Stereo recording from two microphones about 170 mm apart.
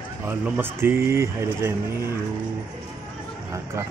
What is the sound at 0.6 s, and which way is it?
Speech, 15° right (ahead or behind).